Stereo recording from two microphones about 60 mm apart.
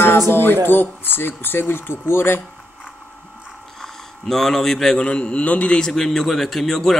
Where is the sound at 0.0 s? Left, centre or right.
Left.